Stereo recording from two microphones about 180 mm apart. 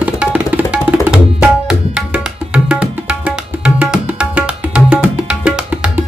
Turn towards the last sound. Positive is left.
turn(degrees=-5)  # may be behind; listen again after turning